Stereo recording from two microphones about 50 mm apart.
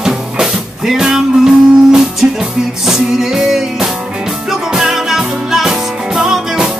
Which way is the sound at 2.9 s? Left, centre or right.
Centre.